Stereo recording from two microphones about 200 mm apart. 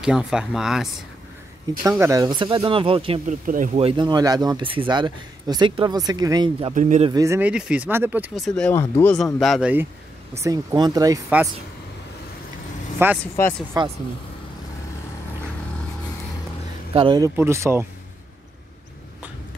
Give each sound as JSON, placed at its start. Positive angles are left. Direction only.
{"t": 0.0, "sound": "speech", "side_deg": -5}
{"t": 1.8, "sound": "speech", "side_deg": -15}
{"t": 3.4, "sound": "speech", "side_deg": -40}
{"t": 6.7, "sound": "speech", "side_deg": -40}
{"t": 7.1, "sound": "speech", "side_deg": -15}
{"t": 8.5, "sound": "speech", "side_deg": 5}
{"t": 10.4, "sound": "speech", "side_deg": -15}
{"t": 13.2, "sound": "speech", "side_deg": 5}
{"t": 16.9, "sound": "speech", "side_deg": -25}